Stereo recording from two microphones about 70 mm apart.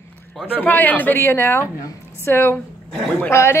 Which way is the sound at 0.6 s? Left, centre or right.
Left.